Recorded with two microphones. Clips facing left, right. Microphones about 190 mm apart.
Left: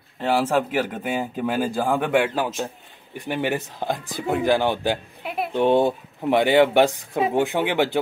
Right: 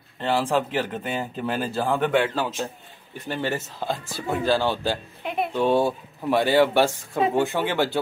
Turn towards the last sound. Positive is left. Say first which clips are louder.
# left 2 dB
turn(degrees=15)  # may be behind; listen again after turning